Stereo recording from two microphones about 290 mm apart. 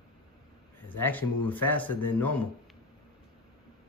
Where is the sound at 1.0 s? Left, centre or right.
Centre.